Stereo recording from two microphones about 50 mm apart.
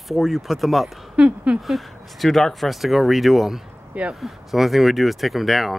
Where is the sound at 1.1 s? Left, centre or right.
Right.